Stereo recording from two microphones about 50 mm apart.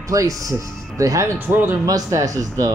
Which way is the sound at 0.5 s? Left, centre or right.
Right.